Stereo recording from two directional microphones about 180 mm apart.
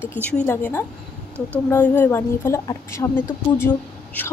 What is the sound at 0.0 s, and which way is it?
A woman's voice, 5° left (ahead or behind).